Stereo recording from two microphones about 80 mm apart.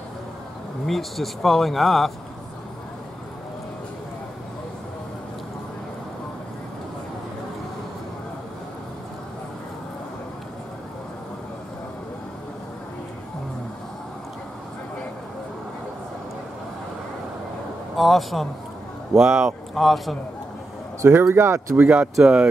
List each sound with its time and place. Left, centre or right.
0.8 s speech: centre
17.9 s a sound: centre
19.1 s speech: centre
21.1 s speech: right
21.7 s speech: centre